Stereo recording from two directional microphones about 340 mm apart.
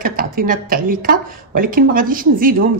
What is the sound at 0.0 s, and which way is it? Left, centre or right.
Speech, right.